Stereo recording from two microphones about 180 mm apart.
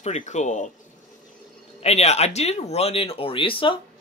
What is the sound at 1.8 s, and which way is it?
Speech, 35° left (ahead or behind).